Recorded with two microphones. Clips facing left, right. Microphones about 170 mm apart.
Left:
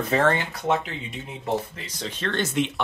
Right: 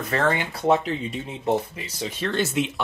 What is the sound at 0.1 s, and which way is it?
Speech, 15° left (ahead or behind).